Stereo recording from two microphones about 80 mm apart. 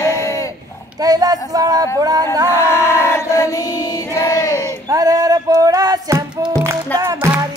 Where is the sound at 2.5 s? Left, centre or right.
Left.